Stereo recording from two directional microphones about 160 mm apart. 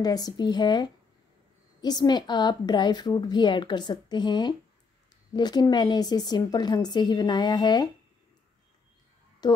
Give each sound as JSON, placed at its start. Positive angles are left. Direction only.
{"t": 0.0, "sound": "a woman's voice", "side_deg": 25}
{"t": 9.4, "sound": "speech", "side_deg": 25}